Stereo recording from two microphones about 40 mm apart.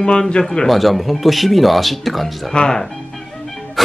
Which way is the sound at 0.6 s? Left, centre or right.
Centre.